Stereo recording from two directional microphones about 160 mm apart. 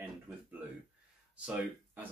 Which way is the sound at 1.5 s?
5° right (ahead or behind).